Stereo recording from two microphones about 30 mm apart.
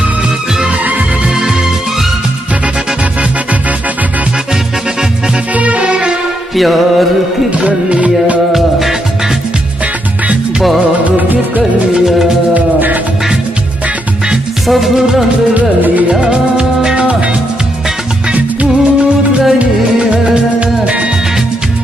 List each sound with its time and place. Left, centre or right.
0.7 s music: right
5.5 s music: right
5.8 s music: right
6.5 s music: centre
7.5 s music: right
8.5 s music: centre
11.1 s music: right
14.7 s music: centre
15.5 s music: right
16.1 s music: right
18.3 s music: right
20.6 s music: right